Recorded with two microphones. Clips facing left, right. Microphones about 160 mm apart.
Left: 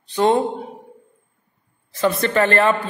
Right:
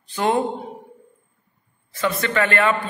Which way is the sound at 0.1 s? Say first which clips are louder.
Left 4 dB; 20° left (ahead or behind).